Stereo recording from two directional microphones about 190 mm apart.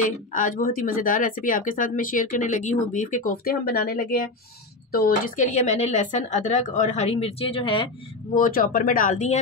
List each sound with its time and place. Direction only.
0.0 s speech: 45° left (ahead or behind); by 7.9 s 25° left (ahead or behind)
8.4 s speech: 50° left (ahead or behind)